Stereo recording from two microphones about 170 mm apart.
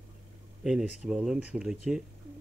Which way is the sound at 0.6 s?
5° right (ahead or behind).